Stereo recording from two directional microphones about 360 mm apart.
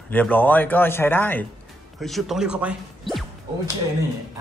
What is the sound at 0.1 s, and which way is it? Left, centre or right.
A man's voice, centre.